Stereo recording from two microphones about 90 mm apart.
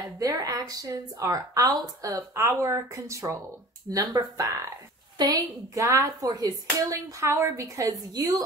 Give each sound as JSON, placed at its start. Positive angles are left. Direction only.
{"t": 0.2, "sound": "speech", "side_deg": -40}
{"t": 5.1, "sound": "a woman's voice", "side_deg": -50}
{"t": 5.8, "sound": "speech", "side_deg": -35}
{"t": 6.2, "sound": "speech", "side_deg": -45}
{"t": 6.9, "sound": "speech", "side_deg": -35}